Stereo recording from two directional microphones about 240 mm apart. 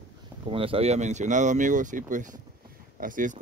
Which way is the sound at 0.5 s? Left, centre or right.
Right.